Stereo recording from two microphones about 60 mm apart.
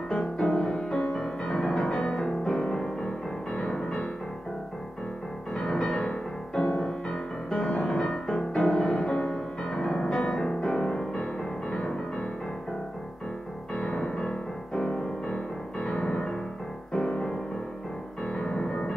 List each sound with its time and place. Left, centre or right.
0.4 s music: centre
5.5 s music: centre
13.7 s music: centre